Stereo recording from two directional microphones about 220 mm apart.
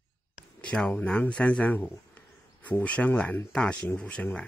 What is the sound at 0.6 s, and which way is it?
Speech, 5° left (ahead or behind).